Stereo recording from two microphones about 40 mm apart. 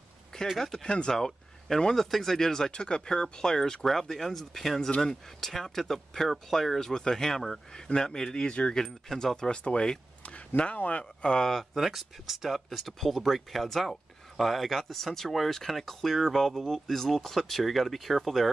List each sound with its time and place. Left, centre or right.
0.6 s speech: centre
0.8 s speech: left
1.1 s a sound: centre
2.0 s speech: centre
3.8 s speech: centre
6.9 s speech: centre
9.5 s speech: left
11.2 s speech: centre
11.5 s speech: centre